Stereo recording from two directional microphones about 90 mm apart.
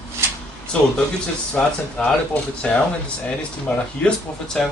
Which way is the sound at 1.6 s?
10° left (ahead or behind).